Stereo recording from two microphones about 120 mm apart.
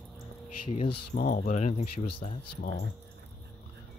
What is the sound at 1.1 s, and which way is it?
Speech, 90° left.